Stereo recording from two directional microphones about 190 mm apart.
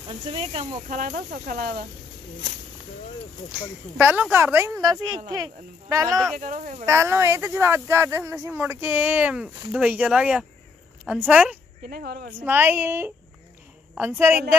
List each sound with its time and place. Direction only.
0.1 s speech: 30° right (ahead or behind); by 1.8 s 50° right (ahead or behind)
4.0 s speech: 10° right (ahead or behind)
6.3 s speech: 45° right (ahead or behind)
6.9 s speech: 15° right (ahead or behind)
11.9 s speech: 55° right (ahead or behind)
12.4 s speech: 10° right (ahead or behind)